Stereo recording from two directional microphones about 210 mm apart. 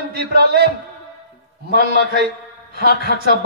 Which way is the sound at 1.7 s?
50° right (ahead or behind).